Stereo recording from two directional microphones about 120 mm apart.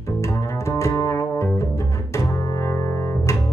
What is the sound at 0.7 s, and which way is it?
Music, 25° left (ahead or behind).